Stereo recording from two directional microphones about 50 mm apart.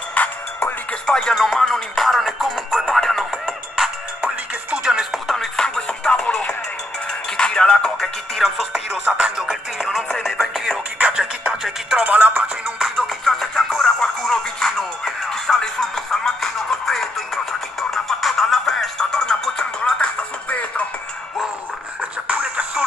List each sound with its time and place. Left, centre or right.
0.2 s music: left
1.0 s music: centre
1.3 s music: centre
2.4 s music: centre
2.9 s music: centre
3.3 s music: centre
5.3 s music: centre
8.0 s music: centre
11.0 s music: right
12.0 s speech: right
12.7 s music: centre
19.8 s music: left
22.3 s music: right